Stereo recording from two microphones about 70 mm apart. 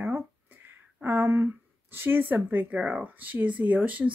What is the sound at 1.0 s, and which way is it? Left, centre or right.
Speech, right.